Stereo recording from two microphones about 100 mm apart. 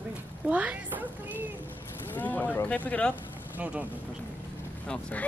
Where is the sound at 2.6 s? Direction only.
15° left (ahead or behind).